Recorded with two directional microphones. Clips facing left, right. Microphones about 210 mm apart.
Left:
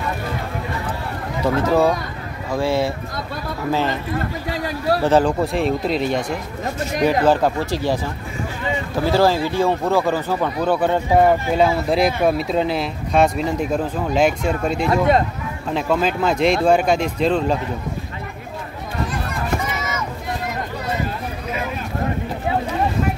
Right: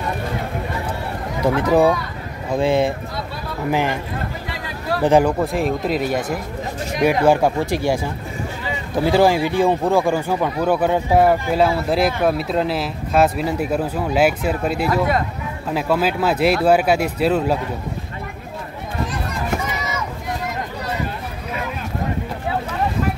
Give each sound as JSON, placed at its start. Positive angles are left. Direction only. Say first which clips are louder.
{"t": 1.4, "sound": "speech", "louder": "right 1 dB", "side_deg": -15}
{"t": 5.0, "sound": "speech", "louder": "right 2 dB", "side_deg": -15}
{"t": 5.4, "sound": "speech", "louder": "even", "side_deg": 0}